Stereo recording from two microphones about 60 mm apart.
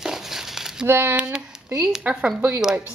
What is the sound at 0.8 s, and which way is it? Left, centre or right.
Speech, right.